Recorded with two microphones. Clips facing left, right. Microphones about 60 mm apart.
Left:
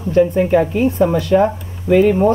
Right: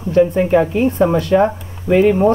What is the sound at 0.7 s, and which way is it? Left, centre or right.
Speech, right.